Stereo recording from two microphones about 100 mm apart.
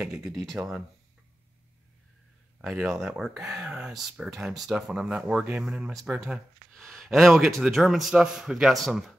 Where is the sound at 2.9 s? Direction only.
Centre (ahead or behind).